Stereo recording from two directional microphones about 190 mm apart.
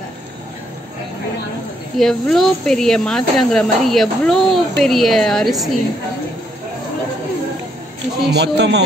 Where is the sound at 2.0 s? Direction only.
Centre (ahead or behind).